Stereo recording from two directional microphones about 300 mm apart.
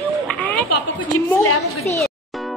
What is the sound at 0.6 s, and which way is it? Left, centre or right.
Speech, left.